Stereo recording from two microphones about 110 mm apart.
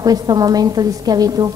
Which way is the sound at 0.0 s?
35° right (ahead or behind).